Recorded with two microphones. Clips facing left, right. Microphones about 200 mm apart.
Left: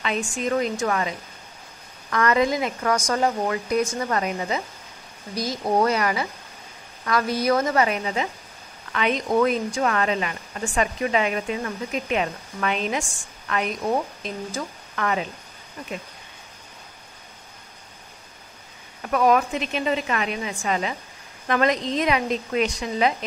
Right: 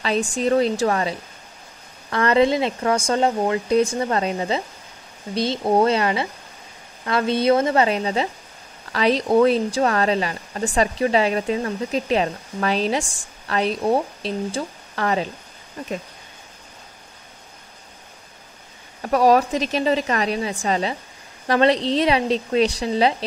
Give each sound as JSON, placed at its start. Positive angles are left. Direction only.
{"t": 0.0, "sound": "a woman's voice", "side_deg": -35}
{"t": 19.0, "sound": "speech", "side_deg": -35}